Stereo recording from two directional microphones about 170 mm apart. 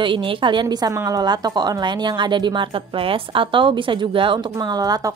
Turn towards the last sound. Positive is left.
turn(degrees=-20)  # may be behind; listen again after turning